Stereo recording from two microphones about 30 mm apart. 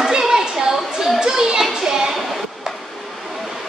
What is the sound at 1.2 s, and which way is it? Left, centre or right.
Children playing, right.